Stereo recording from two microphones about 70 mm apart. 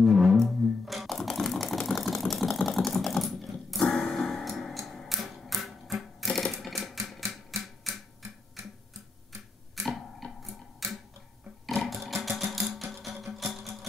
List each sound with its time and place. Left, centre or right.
0.0 s music: centre
7.6 s typewriter: centre
9.8 s a sound: centre
11.6 s sewing machine: centre
13.0 s music: centre